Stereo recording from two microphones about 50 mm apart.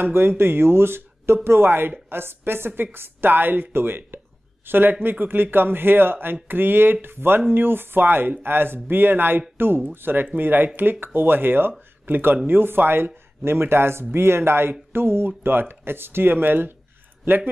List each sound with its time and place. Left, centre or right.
0.0 s speech: right